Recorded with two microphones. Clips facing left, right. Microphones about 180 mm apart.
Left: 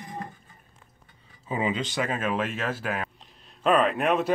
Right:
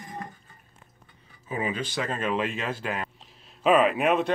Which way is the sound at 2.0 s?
5° left (ahead or behind).